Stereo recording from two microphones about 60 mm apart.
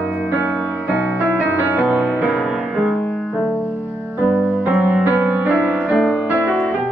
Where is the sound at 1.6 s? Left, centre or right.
Right.